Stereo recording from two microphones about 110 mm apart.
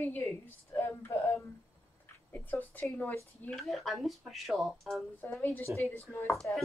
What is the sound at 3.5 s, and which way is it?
Speech, centre (ahead or behind).